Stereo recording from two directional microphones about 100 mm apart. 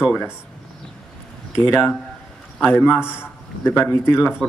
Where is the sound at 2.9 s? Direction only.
10° right (ahead or behind).